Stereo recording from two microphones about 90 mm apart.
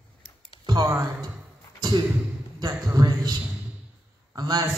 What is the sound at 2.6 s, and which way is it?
Speech, 45° right (ahead or behind).